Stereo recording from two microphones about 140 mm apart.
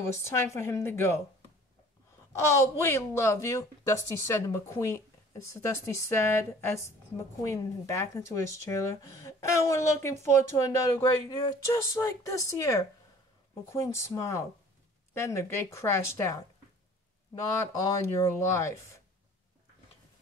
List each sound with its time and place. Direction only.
0.1 s speech: 20° left (ahead or behind)
2.3 s speech: 20° left (ahead or behind)
17.8 s speech: 25° left (ahead or behind)